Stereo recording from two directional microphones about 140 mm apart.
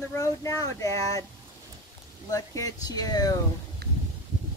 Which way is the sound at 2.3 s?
25° left (ahead or behind).